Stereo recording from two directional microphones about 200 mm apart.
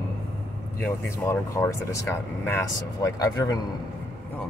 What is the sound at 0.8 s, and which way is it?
Speech, 10° left (ahead or behind).